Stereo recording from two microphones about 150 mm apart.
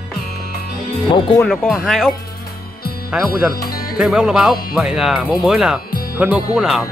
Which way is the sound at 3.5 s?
90° left.